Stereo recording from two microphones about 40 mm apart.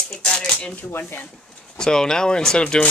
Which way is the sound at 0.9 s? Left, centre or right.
Left.